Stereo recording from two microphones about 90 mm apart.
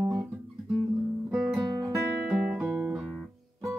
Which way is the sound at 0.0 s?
45° right (ahead or behind).